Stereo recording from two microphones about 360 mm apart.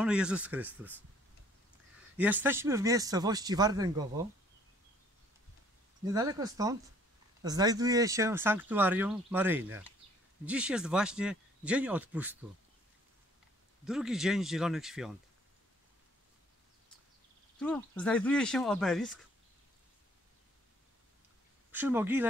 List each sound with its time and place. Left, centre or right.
0.0 s speech: centre
2.1 s speech: centre
6.0 s speech: centre
13.8 s speech: centre
17.6 s speech: centre
21.7 s speech: centre